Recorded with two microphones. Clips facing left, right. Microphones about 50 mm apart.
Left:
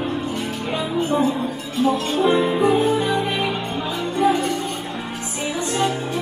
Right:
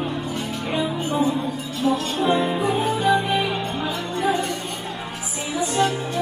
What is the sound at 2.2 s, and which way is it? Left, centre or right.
Music, centre.